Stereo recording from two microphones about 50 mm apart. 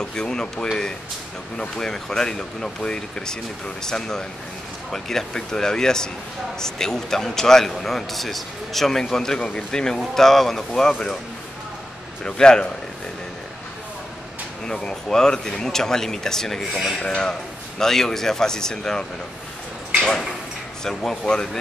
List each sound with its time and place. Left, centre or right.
0.0 s a man's voice: centre
12.3 s a man's voice: centre
14.7 s a man's voice: centre
20.8 s a man's voice: centre